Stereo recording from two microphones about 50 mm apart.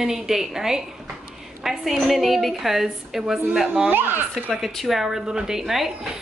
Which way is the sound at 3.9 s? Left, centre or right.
Right.